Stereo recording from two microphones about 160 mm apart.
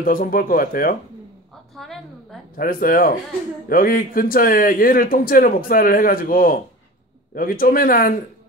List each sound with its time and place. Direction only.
0.0 s speech: 65° left (ahead or behind)
1.8 s a sound: centre (ahead or behind)
2.5 s speech: 65° left (ahead or behind)